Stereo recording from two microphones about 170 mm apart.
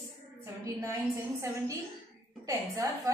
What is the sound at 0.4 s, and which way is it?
A woman's voice, 15° right (ahead or behind).